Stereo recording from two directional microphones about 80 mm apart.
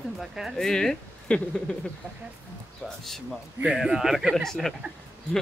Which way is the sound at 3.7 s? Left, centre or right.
Centre.